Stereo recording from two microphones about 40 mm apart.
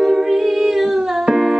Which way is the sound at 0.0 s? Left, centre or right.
Centre.